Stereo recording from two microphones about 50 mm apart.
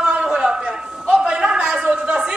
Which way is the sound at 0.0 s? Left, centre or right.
Centre.